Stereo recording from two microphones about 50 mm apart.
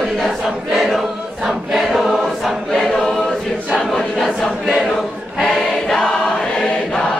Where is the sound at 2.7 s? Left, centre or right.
Centre.